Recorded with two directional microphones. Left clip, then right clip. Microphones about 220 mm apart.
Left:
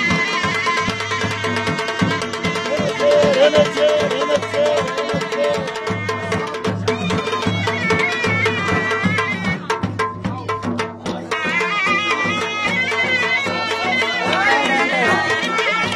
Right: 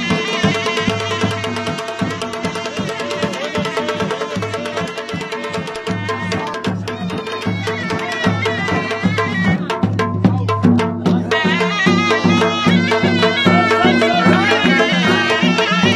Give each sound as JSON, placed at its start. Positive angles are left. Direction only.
{"t": 0.1, "sound": "music", "side_deg": -50}
{"t": 7.9, "sound": "music", "side_deg": -50}
{"t": 11.5, "sound": "music", "side_deg": -45}